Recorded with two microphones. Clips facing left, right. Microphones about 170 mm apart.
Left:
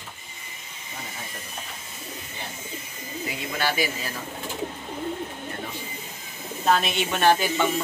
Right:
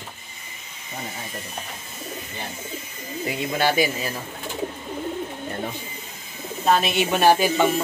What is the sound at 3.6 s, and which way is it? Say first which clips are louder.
Speech: right 5 dB; 20° right (ahead or behind).